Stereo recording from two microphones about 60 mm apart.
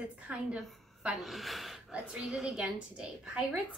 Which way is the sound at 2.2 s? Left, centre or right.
Centre.